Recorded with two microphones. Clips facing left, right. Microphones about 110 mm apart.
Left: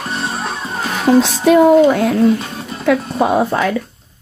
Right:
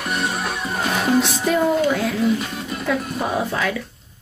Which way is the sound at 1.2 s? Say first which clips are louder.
Left 9 dB; 70° left (ahead or behind).